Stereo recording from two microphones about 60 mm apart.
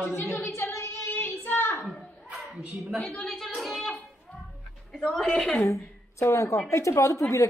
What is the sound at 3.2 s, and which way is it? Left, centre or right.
Speech, centre.